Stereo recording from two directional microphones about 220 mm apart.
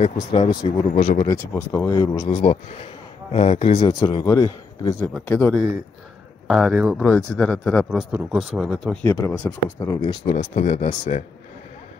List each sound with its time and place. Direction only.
0.0 s speech: 25° left (ahead or behind)
0.9 s speech: 30° left (ahead or behind)
1.2 s a man's voice: 15° left (ahead or behind)
9.0 s speech: 10° left (ahead or behind)
10.2 s speech: 30° left (ahead or behind)